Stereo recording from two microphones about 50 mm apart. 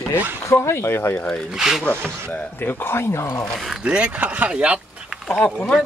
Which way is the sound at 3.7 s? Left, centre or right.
Right.